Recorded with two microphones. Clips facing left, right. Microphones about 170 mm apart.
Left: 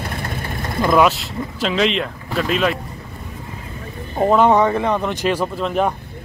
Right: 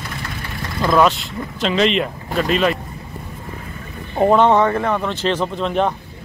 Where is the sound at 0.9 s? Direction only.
5° left (ahead or behind).